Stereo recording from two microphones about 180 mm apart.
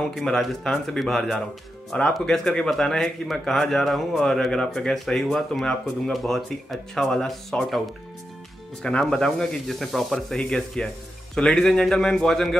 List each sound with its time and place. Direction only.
0.0 s speech: 5° left (ahead or behind)
8.8 s speech: 5° left (ahead or behind)